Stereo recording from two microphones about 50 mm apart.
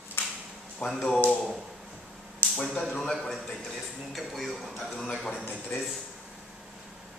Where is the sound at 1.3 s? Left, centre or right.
Centre.